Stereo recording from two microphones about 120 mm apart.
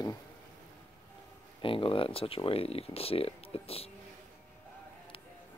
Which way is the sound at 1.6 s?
45° left (ahead or behind).